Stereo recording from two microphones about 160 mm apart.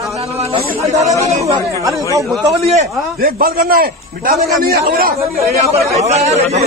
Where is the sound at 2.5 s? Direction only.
40° right (ahead or behind).